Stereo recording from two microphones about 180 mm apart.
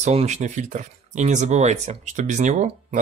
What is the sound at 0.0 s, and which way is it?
Speech, 40° right (ahead or behind).